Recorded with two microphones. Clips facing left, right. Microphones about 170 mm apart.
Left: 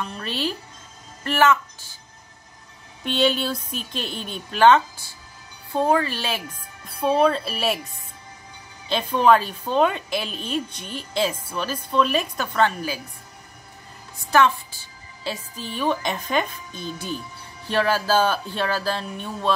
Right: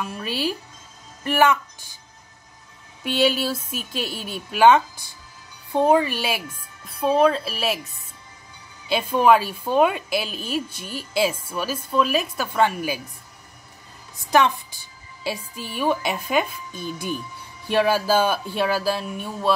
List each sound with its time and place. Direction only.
0.0 s a woman's voice: 10° right (ahead or behind)
1.2 s music: 15° right (ahead or behind)
3.0 s a woman's voice: 5° right (ahead or behind)
6.9 s speech: centre (ahead or behind)
8.8 s a woman's voice: 10° right (ahead or behind)
14.3 s a woman's voice: 15° right (ahead or behind)